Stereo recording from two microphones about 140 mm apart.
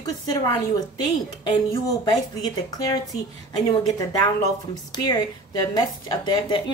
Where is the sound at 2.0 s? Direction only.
30° left (ahead or behind).